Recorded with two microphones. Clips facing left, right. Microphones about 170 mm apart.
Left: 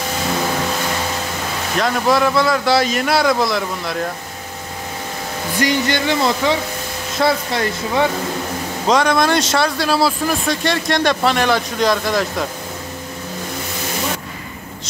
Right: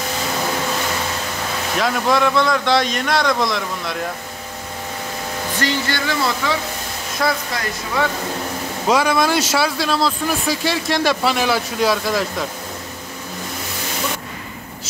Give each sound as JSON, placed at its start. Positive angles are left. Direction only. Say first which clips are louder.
{"t": 1.8, "sound": "a man's voice", "louder": "left 2 dB", "side_deg": 0}
{"t": 5.6, "sound": "speech", "louder": "left 5 dB", "side_deg": 15}
{"t": 8.8, "sound": "a man's voice", "louder": "left 1 dB", "side_deg": -5}
{"t": 9.8, "sound": "a man's voice", "louder": "left 3 dB", "side_deg": 5}